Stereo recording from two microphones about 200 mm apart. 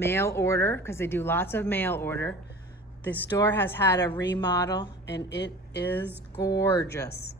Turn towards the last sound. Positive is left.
turn(degrees=20)  # may be behind; listen again after turning